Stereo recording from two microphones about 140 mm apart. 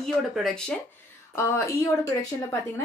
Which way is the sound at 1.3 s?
20° left (ahead or behind).